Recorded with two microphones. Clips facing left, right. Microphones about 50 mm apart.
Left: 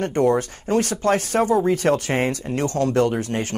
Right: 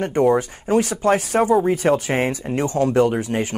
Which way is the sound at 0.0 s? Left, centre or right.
Centre.